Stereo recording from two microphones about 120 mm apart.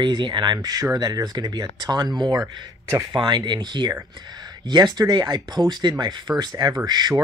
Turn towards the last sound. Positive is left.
turn(degrees=-35)  # may be behind; listen again after turning